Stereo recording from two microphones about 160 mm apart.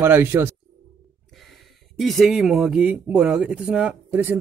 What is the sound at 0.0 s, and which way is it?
Speech, 15° right (ahead or behind).